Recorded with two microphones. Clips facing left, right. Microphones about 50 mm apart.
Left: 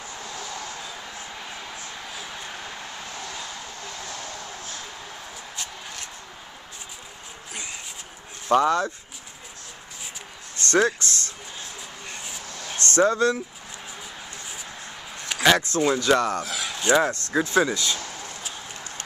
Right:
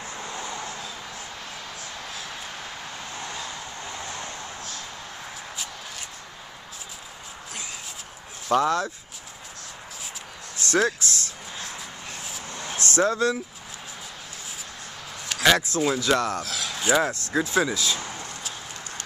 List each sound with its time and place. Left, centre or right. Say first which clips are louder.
0.2 s a sound: right 2 dB; right
2.1 s vehicle: even; centre
3.8 s vehicle: right 2 dB; right
8.5 s speech: left 2 dB; centre
10.7 s speech: left 2 dB; centre
12.1 s vehicle: even; centre
15.2 s speech: left 1 dB; centre